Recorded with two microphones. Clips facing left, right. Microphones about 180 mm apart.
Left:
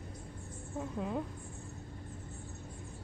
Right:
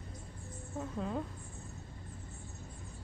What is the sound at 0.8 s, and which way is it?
Speech, 10° left (ahead or behind).